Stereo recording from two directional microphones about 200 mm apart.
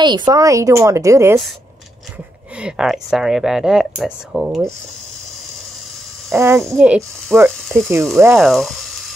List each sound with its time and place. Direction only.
0.0 s a woman's voice: 20° right (ahead or behind)
2.6 s speech: centre (ahead or behind)
6.3 s a woman's voice: 10° right (ahead or behind)
8.2 s frying: 5° right (ahead or behind)